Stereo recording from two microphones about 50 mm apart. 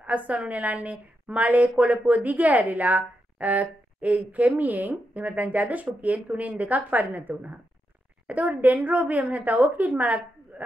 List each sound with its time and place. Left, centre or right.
0.0 s a woman's voice: right